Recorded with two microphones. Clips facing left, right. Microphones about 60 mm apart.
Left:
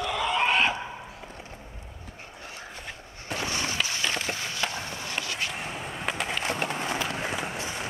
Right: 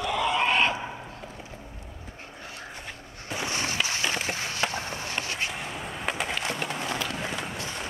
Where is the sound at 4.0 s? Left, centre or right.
Right.